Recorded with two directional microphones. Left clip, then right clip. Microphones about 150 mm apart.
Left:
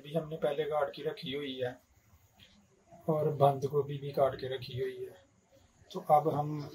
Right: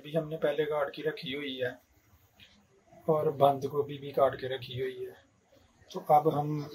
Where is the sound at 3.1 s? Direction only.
Centre (ahead or behind).